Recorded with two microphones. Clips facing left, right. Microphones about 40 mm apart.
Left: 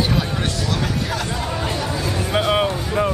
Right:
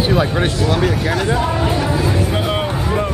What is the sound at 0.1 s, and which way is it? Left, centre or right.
Speech, right.